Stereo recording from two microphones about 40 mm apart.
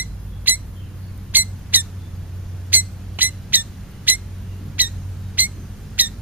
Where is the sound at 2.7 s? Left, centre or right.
Right.